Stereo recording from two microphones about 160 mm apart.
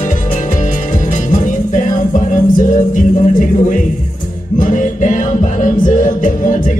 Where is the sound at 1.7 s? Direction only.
55° left (ahead or behind).